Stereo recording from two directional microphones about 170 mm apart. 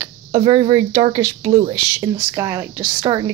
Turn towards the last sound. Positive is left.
turn(degrees=-25)  # may be behind; listen again after turning